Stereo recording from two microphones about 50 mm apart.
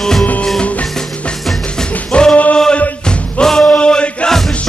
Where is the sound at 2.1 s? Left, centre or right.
Left.